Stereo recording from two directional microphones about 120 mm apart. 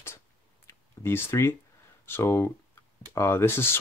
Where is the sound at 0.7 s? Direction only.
20° left (ahead or behind).